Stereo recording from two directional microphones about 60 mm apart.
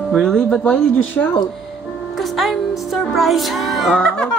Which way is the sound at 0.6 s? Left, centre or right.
Left.